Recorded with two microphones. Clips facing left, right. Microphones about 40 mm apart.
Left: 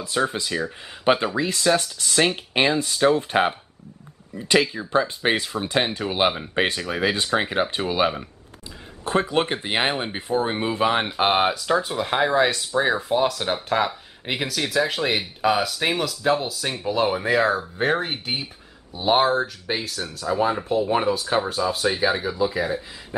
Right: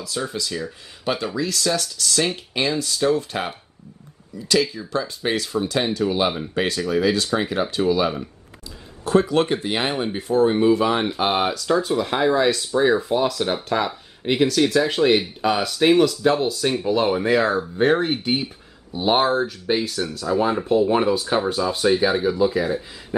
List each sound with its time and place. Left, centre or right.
0.0 s speech: left
9.0 s speech: left; by 20.2 s centre
20.2 s speech: centre